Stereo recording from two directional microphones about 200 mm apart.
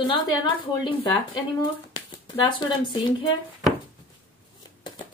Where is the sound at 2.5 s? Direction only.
25° left (ahead or behind).